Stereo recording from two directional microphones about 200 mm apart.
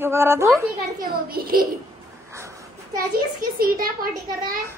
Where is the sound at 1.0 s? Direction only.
50° right (ahead or behind).